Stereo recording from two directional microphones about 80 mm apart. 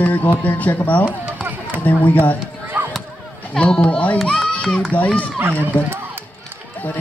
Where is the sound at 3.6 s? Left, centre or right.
Centre.